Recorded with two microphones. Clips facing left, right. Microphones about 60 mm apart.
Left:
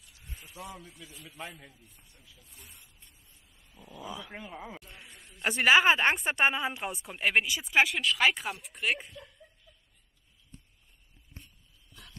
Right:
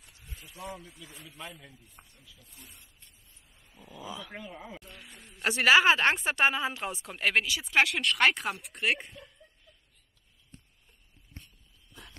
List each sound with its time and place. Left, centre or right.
0.6 s speech: right
1.2 s speech: centre
1.5 s speech: centre
2.0 s speech: right
2.3 s speech: centre
4.2 s speech: centre
5.3 s speech: centre